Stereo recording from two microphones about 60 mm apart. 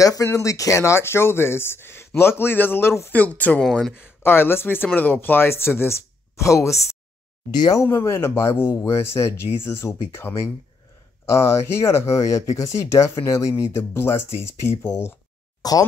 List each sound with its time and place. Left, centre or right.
0.0 s speech: left
3.1 s speech: left
3.9 s speech: left
7.8 s speech: left
13.7 s speech: left
15.6 s speech: left